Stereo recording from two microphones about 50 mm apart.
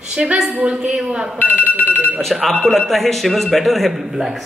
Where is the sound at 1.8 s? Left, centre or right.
Left.